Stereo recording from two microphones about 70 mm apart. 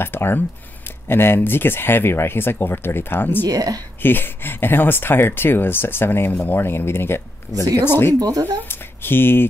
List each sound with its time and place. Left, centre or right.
0.0 s speech: left
3.4 s speech: right
4.0 s speech: left
8.1 s speech: right
8.6 s speech: left